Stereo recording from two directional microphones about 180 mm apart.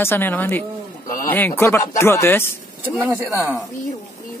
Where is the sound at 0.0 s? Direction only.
10° left (ahead or behind).